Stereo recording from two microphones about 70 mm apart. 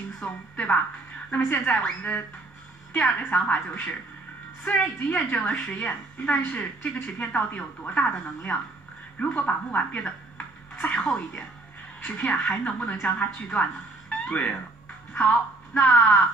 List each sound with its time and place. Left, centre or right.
0.2 s a woman's voice: left
9.2 s a woman's voice: left
10.3 s television: centre
12.0 s a woman's voice: left